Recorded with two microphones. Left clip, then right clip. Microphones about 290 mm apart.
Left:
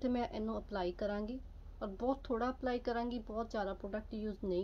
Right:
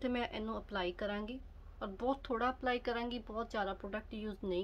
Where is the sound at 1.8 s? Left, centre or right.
Right.